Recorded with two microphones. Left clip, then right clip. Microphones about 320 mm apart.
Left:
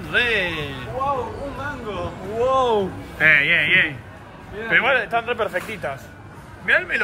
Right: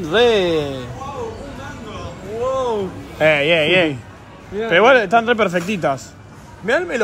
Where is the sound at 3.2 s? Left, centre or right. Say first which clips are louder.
Right 1 dB; centre.